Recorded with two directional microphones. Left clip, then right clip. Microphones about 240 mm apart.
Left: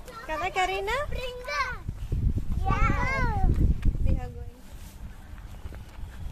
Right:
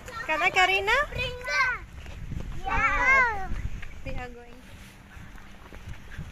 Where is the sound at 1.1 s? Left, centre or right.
Left.